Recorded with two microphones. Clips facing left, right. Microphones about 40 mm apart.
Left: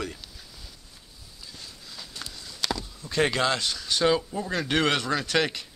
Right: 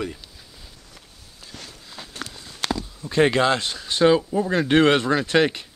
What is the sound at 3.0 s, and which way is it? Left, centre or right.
Speech, right.